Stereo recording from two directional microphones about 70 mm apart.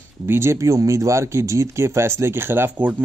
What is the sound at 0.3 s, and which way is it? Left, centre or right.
Speech, right.